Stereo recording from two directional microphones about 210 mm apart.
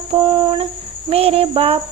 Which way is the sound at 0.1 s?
25° right (ahead or behind).